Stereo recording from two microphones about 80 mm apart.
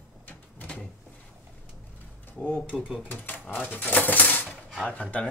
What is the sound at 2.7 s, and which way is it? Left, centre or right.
Speech, centre.